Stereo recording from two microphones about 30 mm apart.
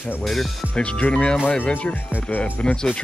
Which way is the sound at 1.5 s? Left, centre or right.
Left.